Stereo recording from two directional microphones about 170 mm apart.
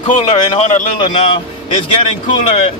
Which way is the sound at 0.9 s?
30° left (ahead or behind).